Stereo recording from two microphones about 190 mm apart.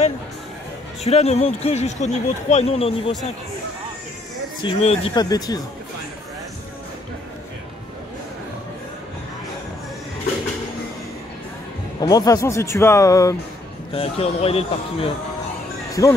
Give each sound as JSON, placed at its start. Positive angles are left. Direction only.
{"t": 1.0, "sound": "speech", "side_deg": 35}
{"t": 4.6, "sound": "speech", "side_deg": 30}
{"t": 12.0, "sound": "speech", "side_deg": 20}
{"t": 13.9, "sound": "speech", "side_deg": 30}
{"t": 15.9, "sound": "speech", "side_deg": 15}